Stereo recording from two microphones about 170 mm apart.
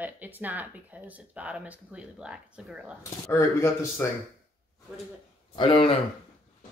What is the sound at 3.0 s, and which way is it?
Speech, 20° left (ahead or behind).